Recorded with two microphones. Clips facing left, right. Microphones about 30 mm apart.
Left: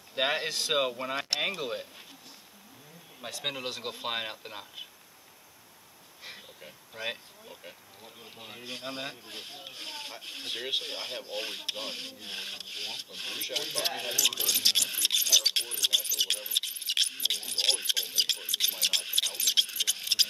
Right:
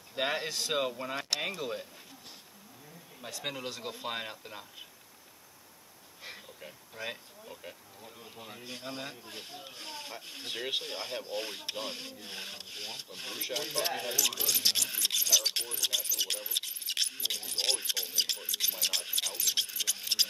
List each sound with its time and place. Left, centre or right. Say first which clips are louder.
0.1 s rub: left 3 dB; left
3.4 s rub: left 3 dB; left
6.9 s speech: left 4 dB; left
8.0 s rub: left 1 dB; left
10.5 s speech: left 2 dB; centre
10.9 s rub: even; left
14.5 s speech: left 3 dB; left
19.4 s rub: left 6 dB; left
20.0 s a sound: left 3 dB; left